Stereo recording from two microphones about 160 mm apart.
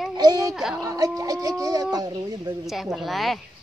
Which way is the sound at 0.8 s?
20° right (ahead or behind).